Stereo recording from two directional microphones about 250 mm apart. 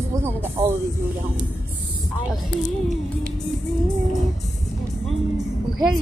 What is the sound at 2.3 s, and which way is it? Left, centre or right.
Speech, centre.